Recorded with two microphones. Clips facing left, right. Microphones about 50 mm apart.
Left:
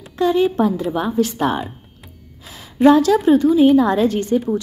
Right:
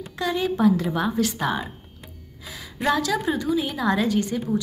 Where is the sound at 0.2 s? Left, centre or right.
Left.